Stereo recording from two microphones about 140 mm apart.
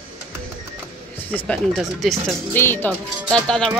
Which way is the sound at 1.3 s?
5° left (ahead or behind).